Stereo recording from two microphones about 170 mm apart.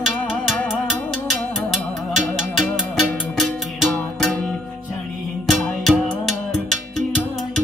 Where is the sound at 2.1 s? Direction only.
Centre (ahead or behind).